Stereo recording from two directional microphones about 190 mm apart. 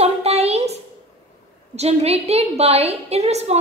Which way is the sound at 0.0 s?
35° right (ahead or behind).